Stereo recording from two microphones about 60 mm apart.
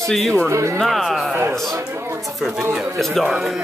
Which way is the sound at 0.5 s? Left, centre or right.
Right.